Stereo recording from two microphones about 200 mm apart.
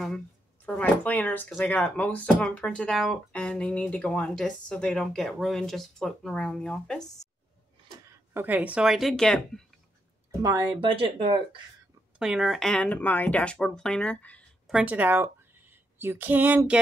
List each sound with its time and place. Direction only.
0.7 s speech: 10° left (ahead or behind)
8.3 s speech: 10° right (ahead or behind)
10.4 s speech: 15° right (ahead or behind)
12.2 s speech: centre (ahead or behind)
14.7 s a woman's voice: 5° right (ahead or behind)